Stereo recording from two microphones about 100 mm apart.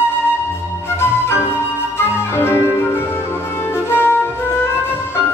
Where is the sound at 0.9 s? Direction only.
25° left (ahead or behind).